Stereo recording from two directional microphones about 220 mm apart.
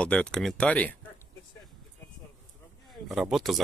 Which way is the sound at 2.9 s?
Centre (ahead or behind).